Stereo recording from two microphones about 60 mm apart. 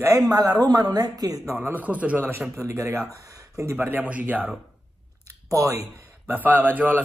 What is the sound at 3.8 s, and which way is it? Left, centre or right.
Speech, right.